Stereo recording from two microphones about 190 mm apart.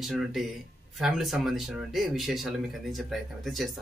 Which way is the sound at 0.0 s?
Centre (ahead or behind).